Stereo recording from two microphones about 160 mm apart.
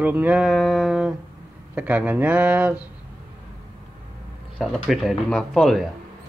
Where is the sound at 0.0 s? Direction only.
10° right (ahead or behind).